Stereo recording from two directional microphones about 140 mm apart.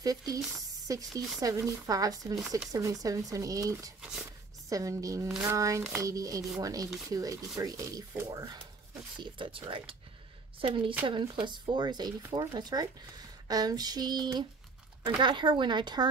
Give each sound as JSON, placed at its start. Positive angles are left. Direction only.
{"t": 0.0, "sound": "speech", "side_deg": -25}
{"t": 9.2, "sound": "speech", "side_deg": -40}